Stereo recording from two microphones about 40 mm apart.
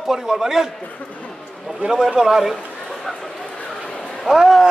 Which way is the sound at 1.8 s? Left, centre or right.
Centre.